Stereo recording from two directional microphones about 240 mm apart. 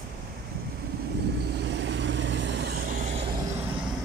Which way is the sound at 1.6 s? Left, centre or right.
Right.